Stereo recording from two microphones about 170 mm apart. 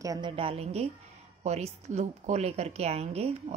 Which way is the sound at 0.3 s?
35° right (ahead or behind).